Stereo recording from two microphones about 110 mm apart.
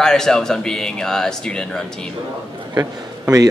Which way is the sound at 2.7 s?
30° right (ahead or behind).